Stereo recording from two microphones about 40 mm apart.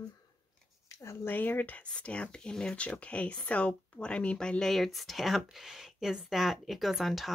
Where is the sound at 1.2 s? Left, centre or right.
Left.